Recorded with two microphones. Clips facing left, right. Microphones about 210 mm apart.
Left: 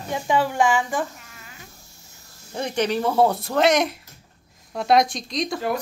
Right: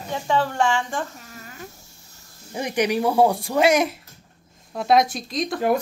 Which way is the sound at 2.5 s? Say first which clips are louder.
Right 1 dB; 15° right (ahead or behind).